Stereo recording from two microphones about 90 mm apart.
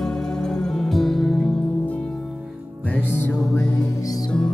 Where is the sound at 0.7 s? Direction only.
5° left (ahead or behind).